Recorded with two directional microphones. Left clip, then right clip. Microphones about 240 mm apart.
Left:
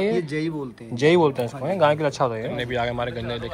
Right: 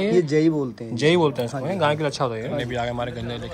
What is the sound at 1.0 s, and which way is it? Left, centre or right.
Speech, centre.